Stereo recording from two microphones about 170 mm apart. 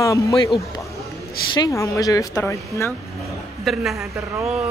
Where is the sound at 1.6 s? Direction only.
20° left (ahead or behind).